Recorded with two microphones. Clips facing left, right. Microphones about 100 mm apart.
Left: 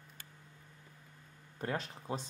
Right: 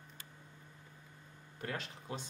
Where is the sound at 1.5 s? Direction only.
35° left (ahead or behind).